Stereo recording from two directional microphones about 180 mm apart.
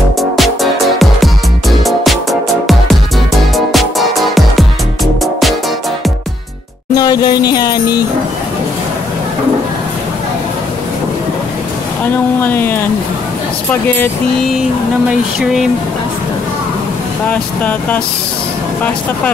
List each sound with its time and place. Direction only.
0.2 s music: centre (ahead or behind)
7.0 s music: 20° left (ahead or behind)
12.4 s speech: 10° left (ahead or behind)
17.3 s speech: 10° left (ahead or behind)